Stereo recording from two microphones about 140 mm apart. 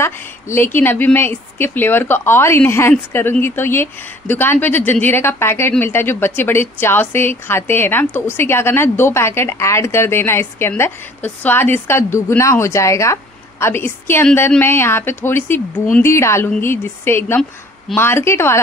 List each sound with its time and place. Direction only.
0.0 s a woman's voice: 20° left (ahead or behind)